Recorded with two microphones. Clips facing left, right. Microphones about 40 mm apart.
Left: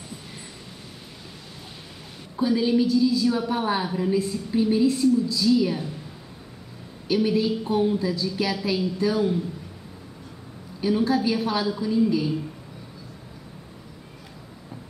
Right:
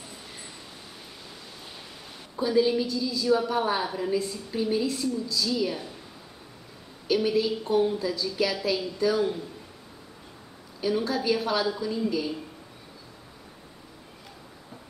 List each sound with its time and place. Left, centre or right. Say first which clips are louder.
2.3 s a woman's voice: left 2 dB; centre
7.1 s a woman's voice: left 2 dB; centre
10.8 s a woman's voice: left 5 dB; centre